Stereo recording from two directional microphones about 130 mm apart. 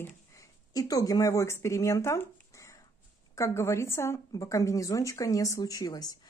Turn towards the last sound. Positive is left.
turn(degrees=30)  # may be behind; listen again after turning